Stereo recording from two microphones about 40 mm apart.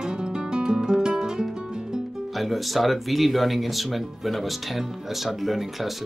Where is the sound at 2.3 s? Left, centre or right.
Centre.